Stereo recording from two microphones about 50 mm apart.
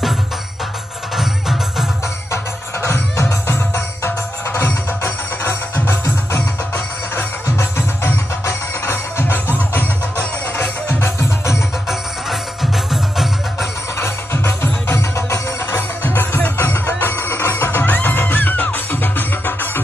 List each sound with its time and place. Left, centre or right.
1.1 s music: centre
2.3 s music: left
7.4 s music: left
11.9 s music: centre
13.9 s music: left
16.0 s music: left